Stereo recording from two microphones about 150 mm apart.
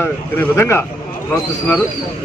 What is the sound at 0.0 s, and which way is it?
Speech, 15° left (ahead or behind).